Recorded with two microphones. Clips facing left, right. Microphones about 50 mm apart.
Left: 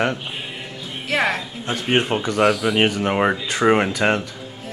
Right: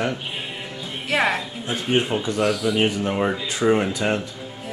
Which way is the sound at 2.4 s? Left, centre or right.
Centre.